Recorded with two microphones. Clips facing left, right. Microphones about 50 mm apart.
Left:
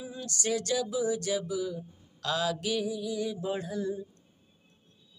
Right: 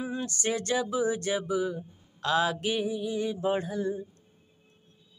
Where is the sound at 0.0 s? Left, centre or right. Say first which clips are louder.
Right 4 dB; right.